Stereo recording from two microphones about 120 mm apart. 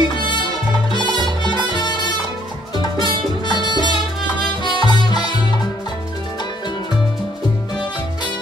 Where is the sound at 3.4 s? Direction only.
35° left (ahead or behind).